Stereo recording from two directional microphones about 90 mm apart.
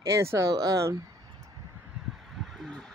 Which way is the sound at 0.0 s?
30° right (ahead or behind).